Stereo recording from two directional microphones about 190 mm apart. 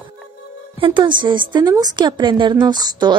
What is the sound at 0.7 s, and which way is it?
A woman's voice, 25° right (ahead or behind).